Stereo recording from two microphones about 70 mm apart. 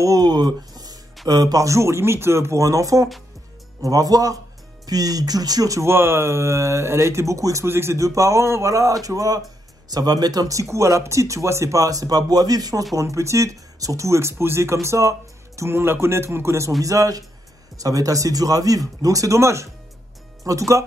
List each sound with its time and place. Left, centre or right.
0.0 s a sound: right
1.2 s speech: right
5.9 s speech: right
7.6 s speech: right
12.9 s speech: right
15.7 s speech: right
16.8 s speech: right